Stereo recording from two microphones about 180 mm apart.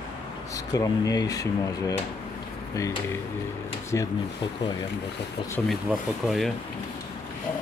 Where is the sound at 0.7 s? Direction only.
20° left (ahead or behind).